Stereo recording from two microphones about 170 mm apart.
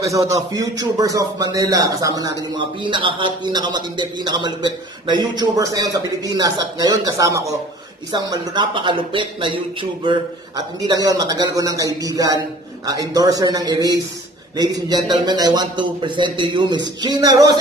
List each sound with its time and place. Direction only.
0.0 s speech: 20° right (ahead or behind)